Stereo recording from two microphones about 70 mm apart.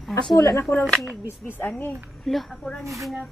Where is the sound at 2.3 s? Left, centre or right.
Centre.